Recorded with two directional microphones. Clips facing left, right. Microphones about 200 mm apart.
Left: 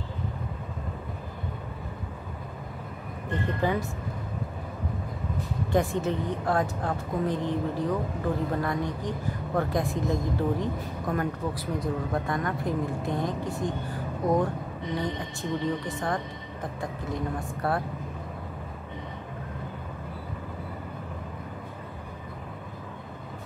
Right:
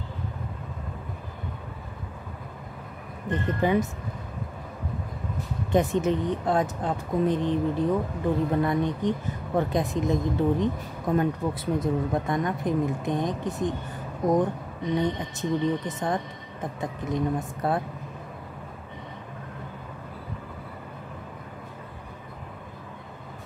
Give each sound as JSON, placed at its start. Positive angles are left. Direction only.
{"t": 3.3, "sound": "speech", "side_deg": -20}
{"t": 5.7, "sound": "speech", "side_deg": -20}